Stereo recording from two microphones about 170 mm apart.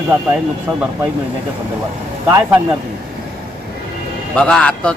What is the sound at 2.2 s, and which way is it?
Speech, 15° right (ahead or behind).